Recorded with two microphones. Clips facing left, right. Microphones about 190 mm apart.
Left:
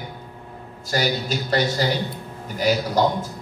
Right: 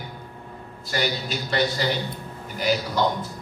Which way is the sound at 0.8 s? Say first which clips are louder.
Left 4 dB; 40° left (ahead or behind).